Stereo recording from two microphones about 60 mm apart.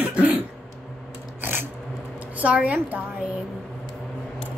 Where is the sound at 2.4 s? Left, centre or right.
Right.